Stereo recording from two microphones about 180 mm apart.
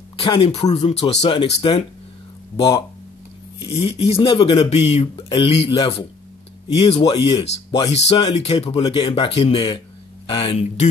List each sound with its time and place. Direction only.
0.2 s speech: 30° left (ahead or behind)
4.0 s speech: 30° left (ahead or behind)